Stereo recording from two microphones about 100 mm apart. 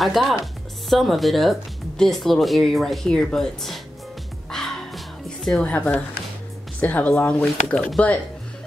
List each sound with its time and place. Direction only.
0.0 s speech: centre (ahead or behind)
4.5 s music: 5° left (ahead or behind)
5.6 s speech: 15° left (ahead or behind)